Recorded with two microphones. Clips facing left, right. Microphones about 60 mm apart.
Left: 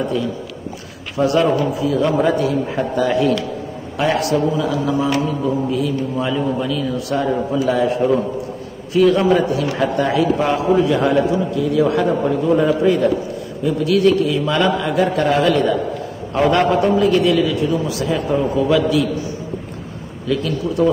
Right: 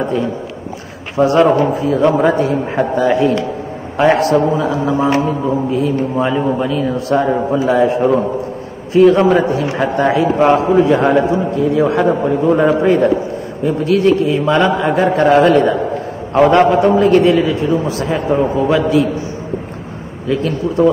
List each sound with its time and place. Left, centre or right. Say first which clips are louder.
0.0 s a man's voice: right 3 dB; right
12.4 s a man's voice: right 4 dB; right
20.2 s a man's voice: right 3 dB; right